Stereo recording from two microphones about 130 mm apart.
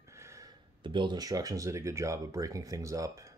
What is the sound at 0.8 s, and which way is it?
Speech, 35° right (ahead or behind).